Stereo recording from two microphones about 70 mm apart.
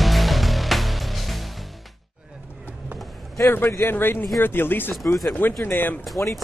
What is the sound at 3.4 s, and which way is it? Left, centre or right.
Speech, left.